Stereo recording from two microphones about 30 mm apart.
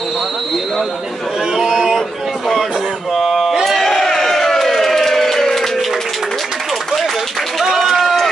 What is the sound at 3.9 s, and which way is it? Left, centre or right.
Crowd, centre.